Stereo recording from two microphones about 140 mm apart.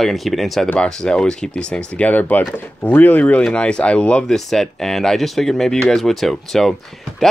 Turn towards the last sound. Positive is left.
turn(degrees=0)  # may be behind; listen again after turning